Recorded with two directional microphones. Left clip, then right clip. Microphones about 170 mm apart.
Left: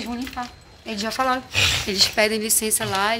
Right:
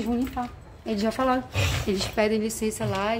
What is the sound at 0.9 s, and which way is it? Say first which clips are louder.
Speech: left 2 dB; 30° right (ahead or behind).